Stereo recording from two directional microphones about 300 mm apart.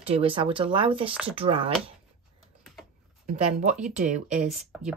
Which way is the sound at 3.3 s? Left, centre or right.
Right.